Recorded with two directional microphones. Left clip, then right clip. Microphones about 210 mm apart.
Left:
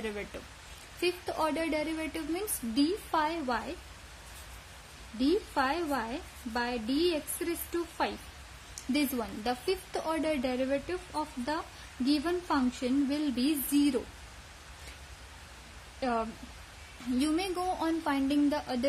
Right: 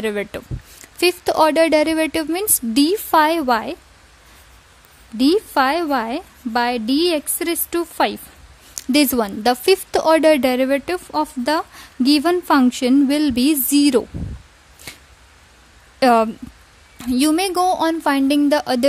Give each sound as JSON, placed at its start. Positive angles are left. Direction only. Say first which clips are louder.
{"t": 0.0, "sound": "a woman's voice", "louder": "right 15 dB", "side_deg": -45}
{"t": 5.2, "sound": "a woman's voice", "louder": "right 13 dB", "side_deg": -45}
{"t": 16.0, "sound": "a woman's voice", "louder": "right 18 dB", "side_deg": -50}